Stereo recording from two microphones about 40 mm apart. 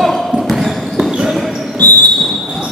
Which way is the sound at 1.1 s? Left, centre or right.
Centre.